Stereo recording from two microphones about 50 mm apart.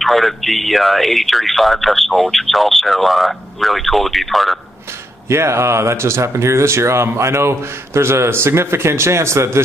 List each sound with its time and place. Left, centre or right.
0.0 s speech: centre
5.3 s speech: right